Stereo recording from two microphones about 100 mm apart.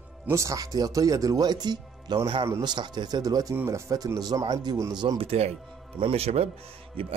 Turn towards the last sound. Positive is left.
turn(degrees=-65)  # may be behind; listen again after turning